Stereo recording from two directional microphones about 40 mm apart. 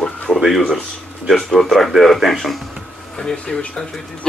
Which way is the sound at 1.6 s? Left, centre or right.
Centre.